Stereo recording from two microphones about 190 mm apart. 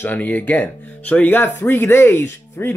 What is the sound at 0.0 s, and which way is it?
Speech, 10° left (ahead or behind).